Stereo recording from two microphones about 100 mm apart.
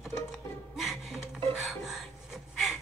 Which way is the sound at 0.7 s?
Centre (ahead or behind).